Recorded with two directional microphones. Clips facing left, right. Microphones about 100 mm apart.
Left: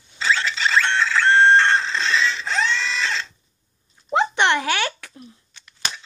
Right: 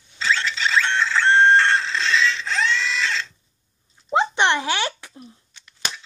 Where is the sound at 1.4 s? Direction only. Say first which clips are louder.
Left 1 dB; centre (ahead or behind).